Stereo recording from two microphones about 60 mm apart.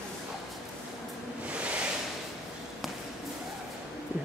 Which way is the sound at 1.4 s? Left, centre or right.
Right.